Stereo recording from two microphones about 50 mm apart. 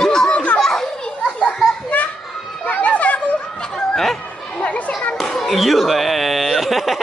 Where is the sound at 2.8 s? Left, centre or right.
Left.